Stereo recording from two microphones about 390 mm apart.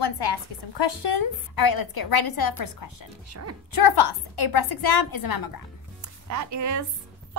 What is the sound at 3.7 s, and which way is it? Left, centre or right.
A woman's voice, left.